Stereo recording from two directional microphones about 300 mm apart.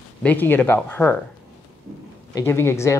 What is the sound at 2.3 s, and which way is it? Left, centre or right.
Speech, centre.